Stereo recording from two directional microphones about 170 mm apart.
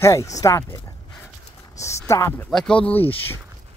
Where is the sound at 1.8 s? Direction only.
20° left (ahead or behind).